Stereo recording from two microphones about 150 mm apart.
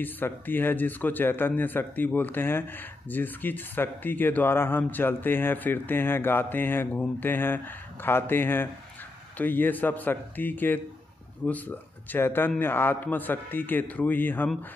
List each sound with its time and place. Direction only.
0.0 s a man's voice: 15° left (ahead or behind)